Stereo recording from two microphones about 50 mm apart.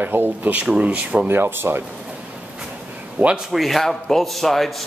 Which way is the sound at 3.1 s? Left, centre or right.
Right.